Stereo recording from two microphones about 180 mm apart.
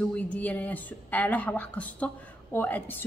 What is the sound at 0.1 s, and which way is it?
A woman's voice, 5° left (ahead or behind).